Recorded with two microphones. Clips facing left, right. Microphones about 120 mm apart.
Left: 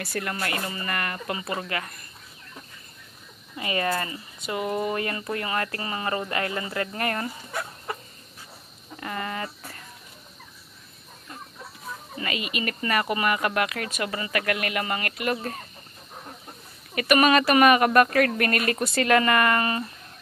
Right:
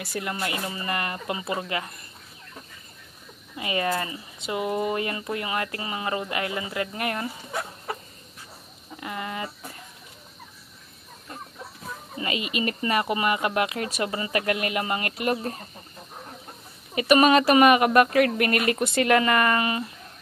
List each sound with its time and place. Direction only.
0.0 s speech: 15° right (ahead or behind)
3.5 s speech: 15° right (ahead or behind)
9.0 s a sound: 15° right (ahead or behind)
12.2 s speech: 25° right (ahead or behind)
16.9 s speech: 25° right (ahead or behind)